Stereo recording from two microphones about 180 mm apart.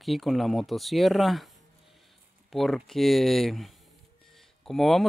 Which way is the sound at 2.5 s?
Centre (ahead or behind).